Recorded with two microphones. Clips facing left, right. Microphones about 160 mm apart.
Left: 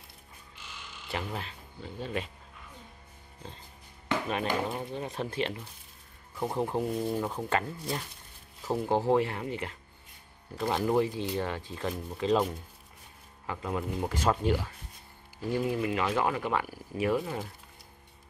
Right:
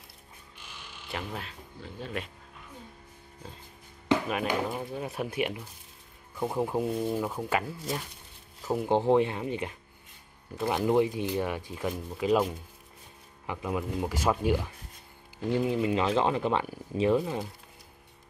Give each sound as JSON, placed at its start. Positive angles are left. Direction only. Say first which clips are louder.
{"t": 1.0, "sound": "speech", "louder": "left 1 dB", "side_deg": 0}
{"t": 4.3, "sound": "speech", "louder": "right 1 dB", "side_deg": -5}
{"t": 8.7, "sound": "speech", "louder": "right 2 dB", "side_deg": -15}